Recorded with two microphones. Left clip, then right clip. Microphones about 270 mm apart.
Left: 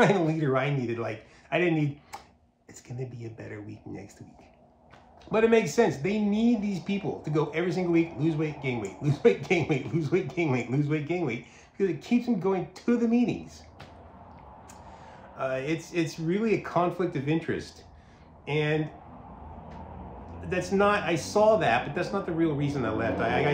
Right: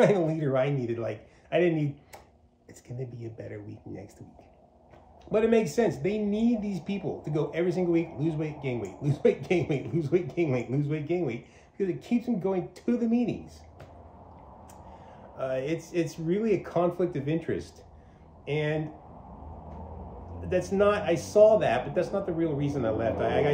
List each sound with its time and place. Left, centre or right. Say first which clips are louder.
0.0 s a man's voice: even; centre
3.0 s a man's voice: even; centre
5.3 s a man's voice: left 1 dB; centre
15.3 s a man's voice: even; centre
20.4 s a man's voice: even; centre